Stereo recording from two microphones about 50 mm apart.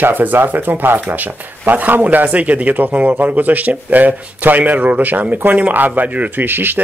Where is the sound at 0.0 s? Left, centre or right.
Right.